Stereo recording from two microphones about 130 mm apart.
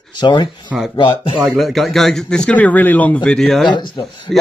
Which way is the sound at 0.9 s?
40° left (ahead or behind).